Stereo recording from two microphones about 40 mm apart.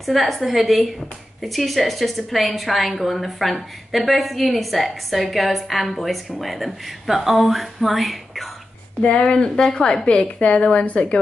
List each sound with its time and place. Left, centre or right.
0.0 s a woman's voice: centre
9.0 s a woman's voice: left